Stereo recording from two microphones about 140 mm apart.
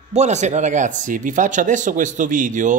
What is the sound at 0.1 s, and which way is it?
Speech, 55° right (ahead or behind).